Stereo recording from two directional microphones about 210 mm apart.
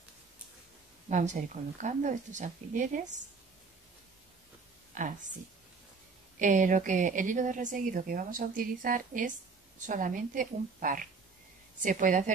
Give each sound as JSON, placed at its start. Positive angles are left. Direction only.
{"t": 1.0, "sound": "a woman's voice", "side_deg": -35}
{"t": 4.9, "sound": "speech", "side_deg": -35}
{"t": 6.4, "sound": "a woman's voice", "side_deg": -35}